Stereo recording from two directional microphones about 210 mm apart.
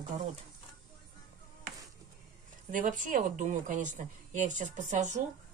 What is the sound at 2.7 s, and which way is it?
Speech, 40° right (ahead or behind).